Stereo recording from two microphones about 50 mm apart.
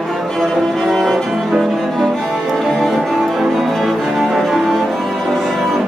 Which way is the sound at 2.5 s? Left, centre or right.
Centre.